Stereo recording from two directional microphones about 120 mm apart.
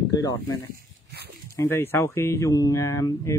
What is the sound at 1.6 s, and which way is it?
Speech, 20° left (ahead or behind).